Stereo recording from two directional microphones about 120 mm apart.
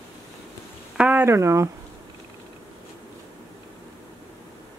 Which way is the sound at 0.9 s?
15° right (ahead or behind).